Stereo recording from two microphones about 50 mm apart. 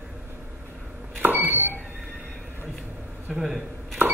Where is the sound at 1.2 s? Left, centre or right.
Right.